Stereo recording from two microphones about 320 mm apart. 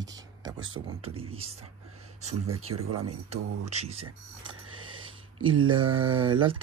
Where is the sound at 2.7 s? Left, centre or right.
Right.